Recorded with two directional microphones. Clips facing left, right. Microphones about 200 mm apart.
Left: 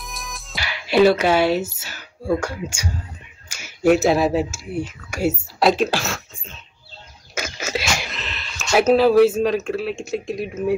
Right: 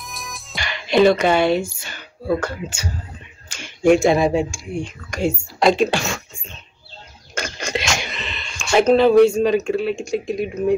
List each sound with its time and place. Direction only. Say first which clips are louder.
0.0 s music: even; centre (ahead or behind)
3.4 s speech: right 2 dB; 10° left (ahead or behind)
7.3 s a sound: right 1 dB; 5° left (ahead or behind)
8.7 s speech: right 1 dB; 5° left (ahead or behind)